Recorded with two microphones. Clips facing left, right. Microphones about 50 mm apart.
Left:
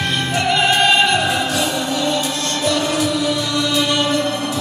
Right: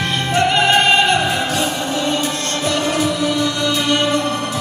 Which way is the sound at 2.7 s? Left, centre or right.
Right.